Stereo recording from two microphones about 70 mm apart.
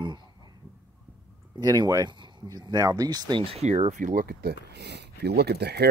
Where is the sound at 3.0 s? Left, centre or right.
Right.